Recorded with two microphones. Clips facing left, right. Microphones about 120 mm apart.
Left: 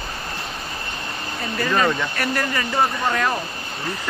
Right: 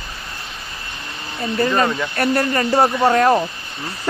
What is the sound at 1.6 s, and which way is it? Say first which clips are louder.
Speech: right 2 dB; 30° right (ahead or behind).